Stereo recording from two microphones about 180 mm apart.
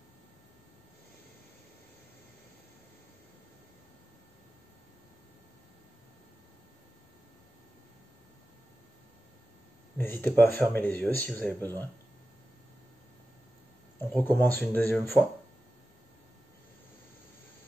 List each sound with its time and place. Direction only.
9.9 s speech: 10° left (ahead or behind)
14.1 s speech: 10° left (ahead or behind)